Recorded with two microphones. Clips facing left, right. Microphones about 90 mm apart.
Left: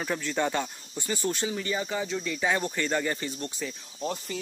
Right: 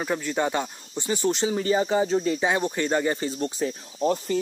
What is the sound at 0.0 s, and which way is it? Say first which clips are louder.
Speech: right 3 dB; 15° right (ahead or behind).